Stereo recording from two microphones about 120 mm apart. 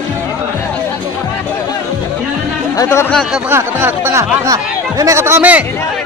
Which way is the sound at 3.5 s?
15° right (ahead or behind).